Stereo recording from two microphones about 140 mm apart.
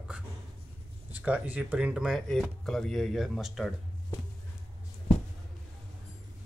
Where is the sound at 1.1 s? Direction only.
10° right (ahead or behind).